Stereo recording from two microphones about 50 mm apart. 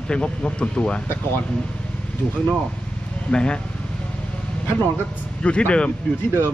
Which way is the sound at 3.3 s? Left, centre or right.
Centre.